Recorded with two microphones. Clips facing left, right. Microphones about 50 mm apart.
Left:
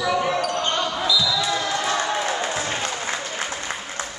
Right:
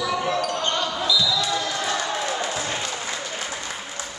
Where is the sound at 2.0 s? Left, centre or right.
Centre.